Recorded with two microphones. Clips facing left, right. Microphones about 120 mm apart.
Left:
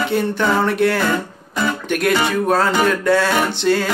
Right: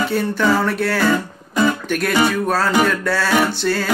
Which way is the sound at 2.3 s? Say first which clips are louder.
Left 2 dB; 20° left (ahead or behind).